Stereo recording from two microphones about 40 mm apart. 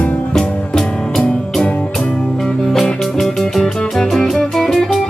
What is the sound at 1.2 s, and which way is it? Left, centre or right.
Music, left.